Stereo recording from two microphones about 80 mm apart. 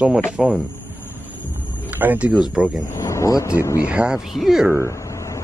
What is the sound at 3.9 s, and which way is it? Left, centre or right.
Speech, centre.